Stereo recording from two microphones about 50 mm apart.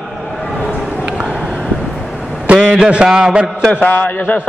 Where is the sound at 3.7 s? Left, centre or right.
Left.